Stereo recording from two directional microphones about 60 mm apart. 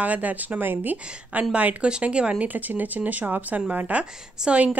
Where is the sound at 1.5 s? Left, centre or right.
Centre.